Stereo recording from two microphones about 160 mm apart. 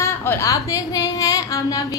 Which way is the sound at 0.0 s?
15° left (ahead or behind).